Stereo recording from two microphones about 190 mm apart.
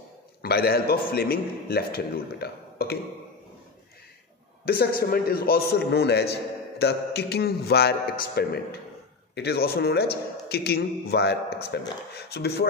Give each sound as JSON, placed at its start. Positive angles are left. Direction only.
{"t": 0.4, "sound": "a man's voice", "side_deg": 55}
{"t": 4.6, "sound": "a man's voice", "side_deg": 50}